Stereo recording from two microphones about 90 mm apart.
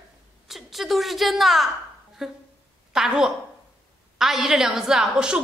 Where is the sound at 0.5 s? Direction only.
Centre (ahead or behind).